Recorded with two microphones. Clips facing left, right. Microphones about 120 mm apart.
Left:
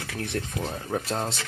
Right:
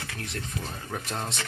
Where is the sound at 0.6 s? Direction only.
30° left (ahead or behind).